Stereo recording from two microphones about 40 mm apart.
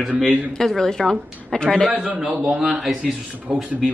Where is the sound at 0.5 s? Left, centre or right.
Centre.